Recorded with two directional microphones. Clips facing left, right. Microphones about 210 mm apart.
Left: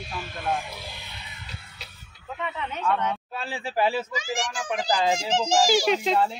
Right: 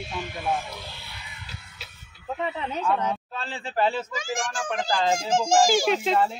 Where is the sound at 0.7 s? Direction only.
15° left (ahead or behind).